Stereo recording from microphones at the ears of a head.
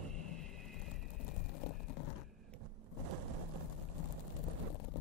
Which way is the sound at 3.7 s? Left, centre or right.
Left.